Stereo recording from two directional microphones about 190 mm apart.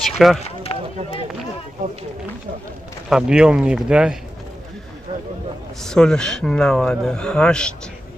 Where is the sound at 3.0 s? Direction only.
5° right (ahead or behind).